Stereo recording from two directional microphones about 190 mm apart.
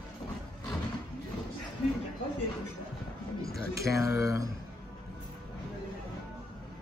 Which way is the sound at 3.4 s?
15° right (ahead or behind).